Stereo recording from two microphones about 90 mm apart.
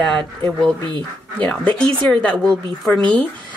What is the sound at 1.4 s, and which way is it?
A woman's voice, 10° left (ahead or behind).